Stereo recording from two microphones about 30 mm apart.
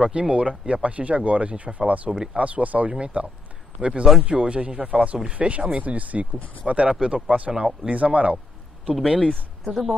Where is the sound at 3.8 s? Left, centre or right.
Right.